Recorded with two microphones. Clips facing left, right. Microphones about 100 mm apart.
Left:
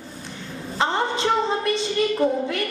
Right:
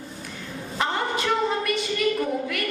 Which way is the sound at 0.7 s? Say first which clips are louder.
Left 3 dB; 25° left (ahead or behind).